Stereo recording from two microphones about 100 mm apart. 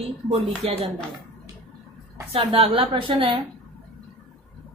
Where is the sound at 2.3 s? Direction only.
65° right (ahead or behind).